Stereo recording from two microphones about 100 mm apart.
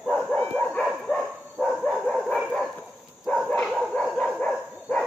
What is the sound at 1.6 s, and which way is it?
Dog, 5° right (ahead or behind).